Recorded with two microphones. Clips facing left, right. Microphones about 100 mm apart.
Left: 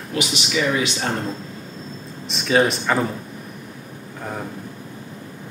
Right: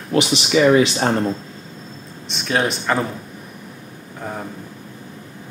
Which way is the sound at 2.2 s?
Centre (ahead or behind).